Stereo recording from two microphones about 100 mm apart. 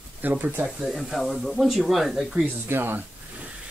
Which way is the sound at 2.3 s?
20° right (ahead or behind).